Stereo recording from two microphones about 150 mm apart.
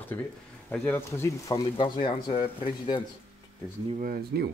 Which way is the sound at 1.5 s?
35° left (ahead or behind).